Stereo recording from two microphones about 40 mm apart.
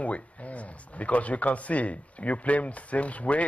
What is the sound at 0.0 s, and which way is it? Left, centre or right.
Speech, left.